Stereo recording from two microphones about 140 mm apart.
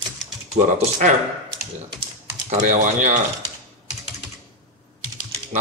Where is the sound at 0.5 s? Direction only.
60° right (ahead or behind).